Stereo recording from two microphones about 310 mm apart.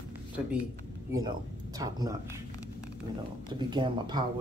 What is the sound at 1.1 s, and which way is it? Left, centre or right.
Speech, centre.